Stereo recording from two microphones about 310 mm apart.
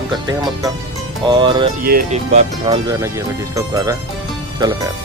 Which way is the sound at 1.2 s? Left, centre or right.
Centre.